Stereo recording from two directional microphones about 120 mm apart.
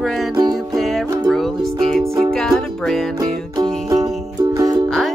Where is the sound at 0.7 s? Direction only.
5° left (ahead or behind).